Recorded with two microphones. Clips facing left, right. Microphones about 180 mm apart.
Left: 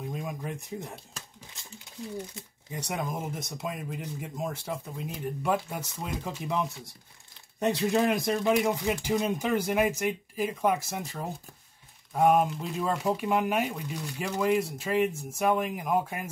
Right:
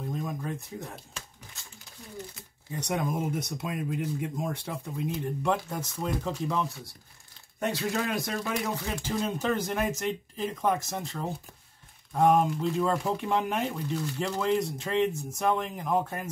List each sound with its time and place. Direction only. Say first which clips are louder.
0.1 s a sound: right 2 dB; 10° left (ahead or behind)
2.3 s speech: right 1 dB; 15° left (ahead or behind)
2.9 s speech: right 4 dB; centre (ahead or behind)
7.6 s speech: left 5 dB; 20° left (ahead or behind)